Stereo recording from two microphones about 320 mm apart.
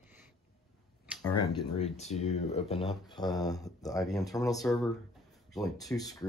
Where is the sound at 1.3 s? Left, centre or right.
Centre.